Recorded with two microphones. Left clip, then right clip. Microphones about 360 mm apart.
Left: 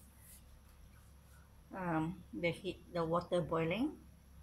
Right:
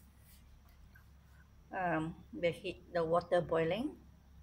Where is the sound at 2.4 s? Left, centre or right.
Centre.